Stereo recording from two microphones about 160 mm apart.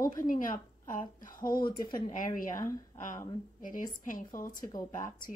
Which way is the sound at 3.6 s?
55° left (ahead or behind).